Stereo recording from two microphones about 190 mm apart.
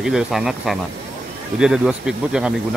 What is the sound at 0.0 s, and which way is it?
Speech, centre (ahead or behind).